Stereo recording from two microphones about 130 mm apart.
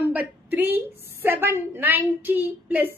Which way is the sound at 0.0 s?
15° right (ahead or behind).